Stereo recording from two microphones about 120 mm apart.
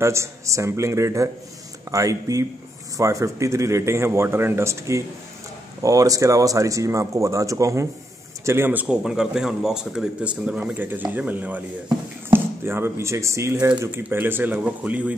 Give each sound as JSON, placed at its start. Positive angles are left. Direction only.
{"t": 0.0, "sound": "speech", "side_deg": -25}
{"t": 8.8, "sound": "speech", "side_deg": -5}